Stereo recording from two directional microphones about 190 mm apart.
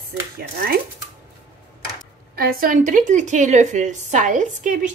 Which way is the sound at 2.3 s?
50° right (ahead or behind).